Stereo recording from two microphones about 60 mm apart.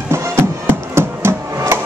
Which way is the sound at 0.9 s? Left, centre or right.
Right.